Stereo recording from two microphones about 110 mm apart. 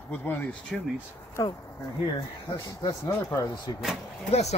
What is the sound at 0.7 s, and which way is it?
Speech, centre (ahead or behind).